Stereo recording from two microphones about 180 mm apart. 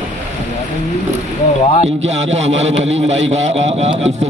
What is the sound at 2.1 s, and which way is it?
Speech, 35° right (ahead or behind).